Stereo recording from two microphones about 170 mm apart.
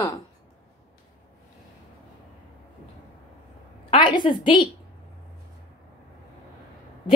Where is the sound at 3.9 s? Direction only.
30° left (ahead or behind).